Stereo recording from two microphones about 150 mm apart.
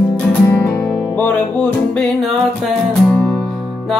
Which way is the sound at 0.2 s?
10° left (ahead or behind).